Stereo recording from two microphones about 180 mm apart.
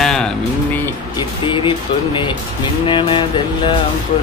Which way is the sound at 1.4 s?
25° left (ahead or behind).